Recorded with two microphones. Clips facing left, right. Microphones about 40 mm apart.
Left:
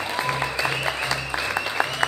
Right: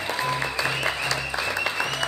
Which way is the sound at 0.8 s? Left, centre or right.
Centre.